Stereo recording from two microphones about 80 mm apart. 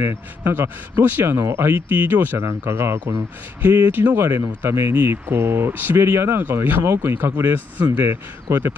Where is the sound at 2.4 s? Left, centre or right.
Right.